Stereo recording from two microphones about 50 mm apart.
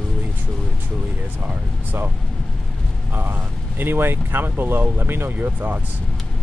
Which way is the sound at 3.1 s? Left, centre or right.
Right.